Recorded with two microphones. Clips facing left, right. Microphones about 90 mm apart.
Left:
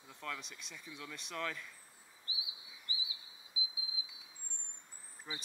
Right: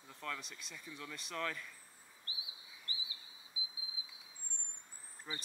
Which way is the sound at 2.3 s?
15° left (ahead or behind).